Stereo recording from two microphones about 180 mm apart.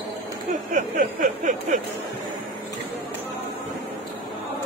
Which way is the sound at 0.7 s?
45° right (ahead or behind).